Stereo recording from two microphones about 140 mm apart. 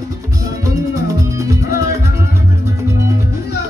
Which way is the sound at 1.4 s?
25° right (ahead or behind).